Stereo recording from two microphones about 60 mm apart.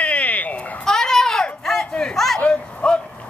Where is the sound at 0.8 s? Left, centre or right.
Centre.